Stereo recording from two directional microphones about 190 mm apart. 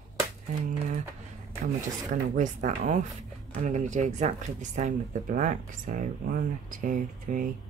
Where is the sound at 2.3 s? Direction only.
40° right (ahead or behind).